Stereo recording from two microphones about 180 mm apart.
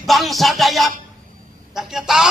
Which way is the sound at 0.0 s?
Centre (ahead or behind).